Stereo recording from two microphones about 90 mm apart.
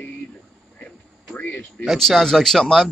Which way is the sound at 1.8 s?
Centre (ahead or behind).